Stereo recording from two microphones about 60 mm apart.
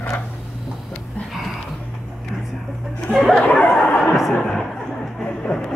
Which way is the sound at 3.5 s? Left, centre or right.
Left.